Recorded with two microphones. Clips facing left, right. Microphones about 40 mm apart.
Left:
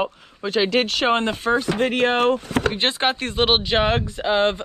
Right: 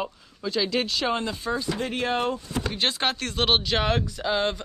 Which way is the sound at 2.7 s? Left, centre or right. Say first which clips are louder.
Left 4 dB; left.